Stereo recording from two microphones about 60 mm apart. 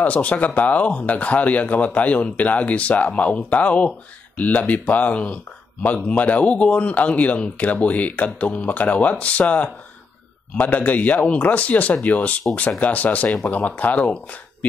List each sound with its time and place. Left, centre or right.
0.0 s speech: left